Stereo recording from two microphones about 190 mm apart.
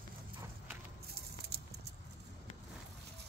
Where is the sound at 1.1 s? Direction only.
55° right (ahead or behind).